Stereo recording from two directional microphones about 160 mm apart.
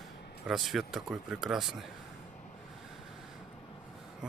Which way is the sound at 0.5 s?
Centre (ahead or behind).